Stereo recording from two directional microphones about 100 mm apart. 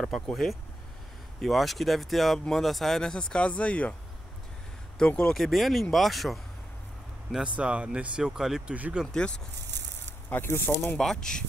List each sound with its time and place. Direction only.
0.0 s speech: centre (ahead or behind)
4.9 s speech: 10° left (ahead or behind)
7.5 s speech: 10° right (ahead or behind)
9.0 s speech: 5° left (ahead or behind)
10.3 s speech: 25° left (ahead or behind)
11.0 s speech: 5° left (ahead or behind)